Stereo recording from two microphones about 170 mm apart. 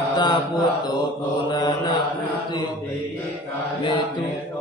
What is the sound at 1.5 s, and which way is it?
Mantra, 25° left (ahead or behind).